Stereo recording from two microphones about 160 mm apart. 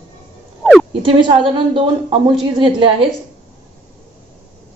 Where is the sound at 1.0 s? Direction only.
30° right (ahead or behind).